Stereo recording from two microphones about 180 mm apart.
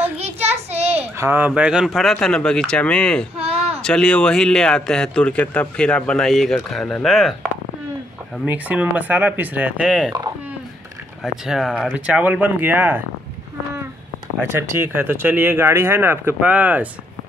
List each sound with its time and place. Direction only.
0.2 s a sound: 35° right (ahead or behind)
1.1 s a man's voice: 15° right (ahead or behind); by 3.3 s 5° left (ahead or behind)
3.3 s a sound: 35° right (ahead or behind)
3.8 s a man's voice: 5° left (ahead or behind)
8.5 s speech: 10° right (ahead or behind)
11.4 s speech: 5° right (ahead or behind)
14.4 s speech: 15° right (ahead or behind)